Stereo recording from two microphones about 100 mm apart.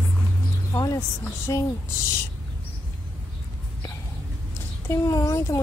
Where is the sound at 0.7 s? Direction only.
35° left (ahead or behind).